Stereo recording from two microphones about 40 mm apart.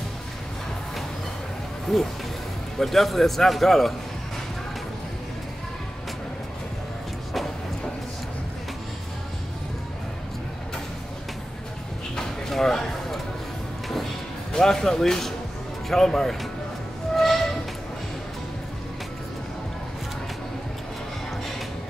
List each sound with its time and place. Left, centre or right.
1.9 s a man's voice: centre
12.2 s a sound: centre
14.5 s speech: centre
17.1 s music: centre